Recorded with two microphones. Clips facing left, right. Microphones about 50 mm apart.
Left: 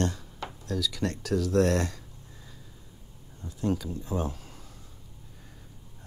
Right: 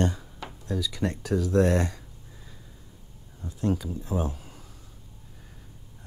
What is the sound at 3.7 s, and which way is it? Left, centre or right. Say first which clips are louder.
Speech: right 1 dB; centre.